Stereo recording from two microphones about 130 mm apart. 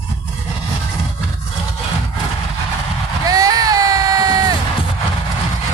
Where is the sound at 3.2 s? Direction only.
30° right (ahead or behind).